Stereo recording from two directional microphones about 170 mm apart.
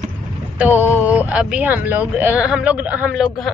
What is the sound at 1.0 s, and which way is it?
Speech, 10° right (ahead or behind).